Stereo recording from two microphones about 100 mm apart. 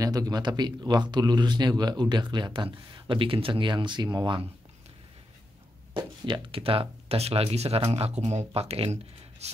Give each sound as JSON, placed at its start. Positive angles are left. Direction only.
{"t": 0.0, "sound": "speech", "side_deg": -40}
{"t": 6.2, "sound": "speech", "side_deg": -55}